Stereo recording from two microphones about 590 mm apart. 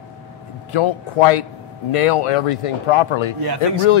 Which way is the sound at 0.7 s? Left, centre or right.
Left.